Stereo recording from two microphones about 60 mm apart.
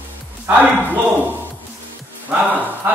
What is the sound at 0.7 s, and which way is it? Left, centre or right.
Speech, right.